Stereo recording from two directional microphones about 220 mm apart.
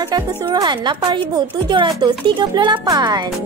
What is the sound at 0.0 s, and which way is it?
Speech, 15° right (ahead or behind).